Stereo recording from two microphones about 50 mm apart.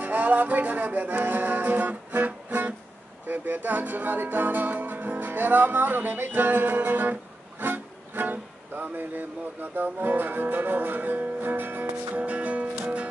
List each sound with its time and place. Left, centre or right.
0.0 s music: right
7.6 s speech: right
12.1 s music: right